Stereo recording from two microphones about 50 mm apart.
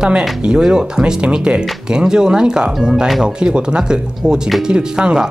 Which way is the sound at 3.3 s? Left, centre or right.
Centre.